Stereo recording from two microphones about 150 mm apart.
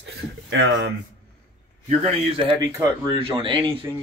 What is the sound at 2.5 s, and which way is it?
Speech, 25° right (ahead or behind).